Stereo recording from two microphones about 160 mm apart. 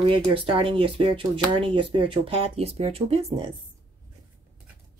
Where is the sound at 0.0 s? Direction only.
35° right (ahead or behind).